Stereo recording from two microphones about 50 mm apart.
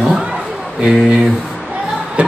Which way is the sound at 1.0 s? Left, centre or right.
Centre.